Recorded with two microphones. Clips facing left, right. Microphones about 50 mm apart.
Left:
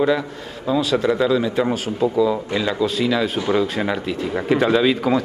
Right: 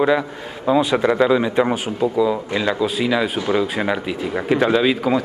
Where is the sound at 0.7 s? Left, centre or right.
Centre.